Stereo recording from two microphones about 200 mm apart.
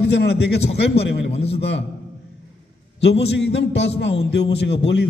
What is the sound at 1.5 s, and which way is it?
Speech, 55° left (ahead or behind).